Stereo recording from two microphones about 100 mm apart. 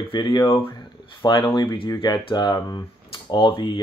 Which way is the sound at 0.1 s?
50° left (ahead or behind).